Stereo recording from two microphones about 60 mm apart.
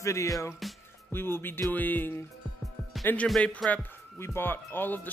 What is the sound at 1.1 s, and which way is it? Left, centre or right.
Speech, left.